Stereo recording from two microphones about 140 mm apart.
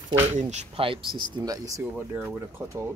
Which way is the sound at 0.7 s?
40° right (ahead or behind).